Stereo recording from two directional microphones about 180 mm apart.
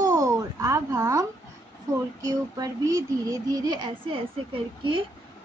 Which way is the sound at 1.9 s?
20° right (ahead or behind).